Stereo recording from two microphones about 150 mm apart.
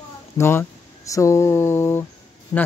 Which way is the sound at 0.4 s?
15° left (ahead or behind).